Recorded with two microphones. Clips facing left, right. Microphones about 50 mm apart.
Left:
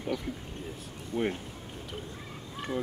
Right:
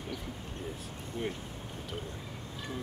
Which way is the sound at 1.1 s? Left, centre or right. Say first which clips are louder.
Left 6 dB; left.